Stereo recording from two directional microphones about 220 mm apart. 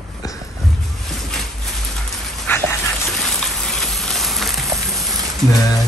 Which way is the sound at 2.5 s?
10° left (ahead or behind).